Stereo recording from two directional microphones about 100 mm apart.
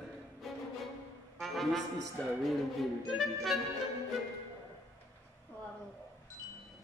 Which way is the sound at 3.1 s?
Centre (ahead or behind).